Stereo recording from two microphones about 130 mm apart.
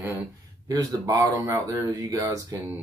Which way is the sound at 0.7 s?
30° right (ahead or behind).